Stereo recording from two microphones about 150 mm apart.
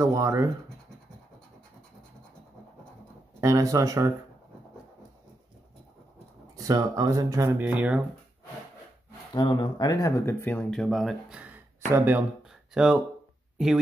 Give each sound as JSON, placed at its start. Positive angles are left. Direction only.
{"t": 0.0, "sound": "speech", "side_deg": -20}
{"t": 3.3, "sound": "speech", "side_deg": -20}
{"t": 6.7, "sound": "speech", "side_deg": -25}
{"t": 9.3, "sound": "speech", "side_deg": 30}